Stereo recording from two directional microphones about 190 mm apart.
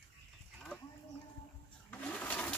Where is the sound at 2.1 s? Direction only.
5° left (ahead or behind).